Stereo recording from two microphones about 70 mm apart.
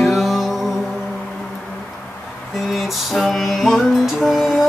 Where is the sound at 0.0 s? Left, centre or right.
Centre.